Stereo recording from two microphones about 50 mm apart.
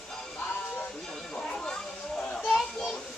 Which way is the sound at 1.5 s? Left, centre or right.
Centre.